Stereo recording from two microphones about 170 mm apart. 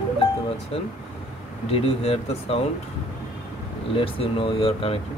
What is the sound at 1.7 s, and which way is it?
Speech, 35° left (ahead or behind).